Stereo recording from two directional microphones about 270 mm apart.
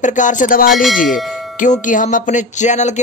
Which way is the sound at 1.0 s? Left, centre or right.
Centre.